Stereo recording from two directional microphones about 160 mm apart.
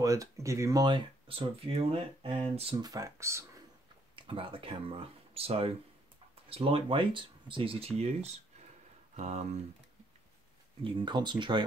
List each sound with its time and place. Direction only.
0.0 s speech: 20° right (ahead or behind); by 2.7 s 35° right (ahead or behind)
2.8 s speech: 20° right (ahead or behind)
4.1 s speech: 35° right (ahead or behind)
10.8 s speech: 30° right (ahead or behind)